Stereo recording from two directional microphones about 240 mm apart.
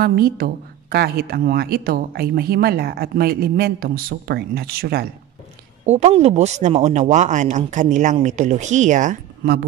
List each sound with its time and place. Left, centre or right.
0.0 s speech: right
5.9 s speech: right